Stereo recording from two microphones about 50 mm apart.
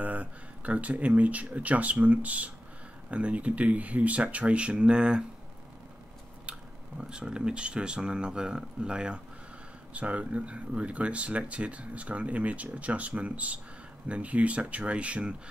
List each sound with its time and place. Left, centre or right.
0.0 s speech: right
7.0 s speech: centre